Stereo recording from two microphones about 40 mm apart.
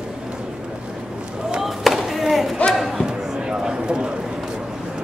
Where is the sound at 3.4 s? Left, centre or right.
Centre.